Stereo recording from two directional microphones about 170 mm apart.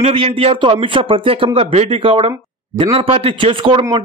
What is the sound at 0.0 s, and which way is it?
A man's voice, 30° right (ahead or behind).